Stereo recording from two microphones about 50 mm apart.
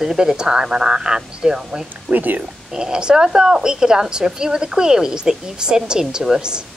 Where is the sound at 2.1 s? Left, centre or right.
Right.